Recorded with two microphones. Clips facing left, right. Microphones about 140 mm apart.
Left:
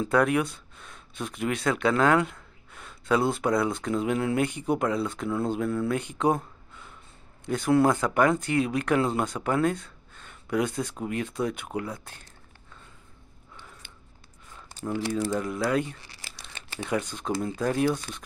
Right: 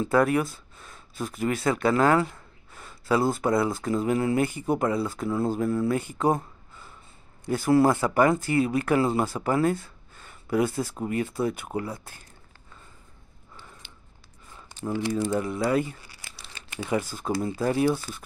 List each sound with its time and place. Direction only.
0.0 s speech: centre (ahead or behind)
15.3 s speech: centre (ahead or behind)
16.3 s crumpling: 20° left (ahead or behind)
16.8 s speech: 5° right (ahead or behind)